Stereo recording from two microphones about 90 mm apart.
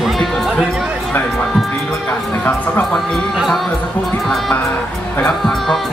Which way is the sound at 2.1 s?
20° left (ahead or behind).